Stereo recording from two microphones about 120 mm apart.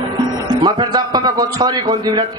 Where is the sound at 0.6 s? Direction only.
35° right (ahead or behind).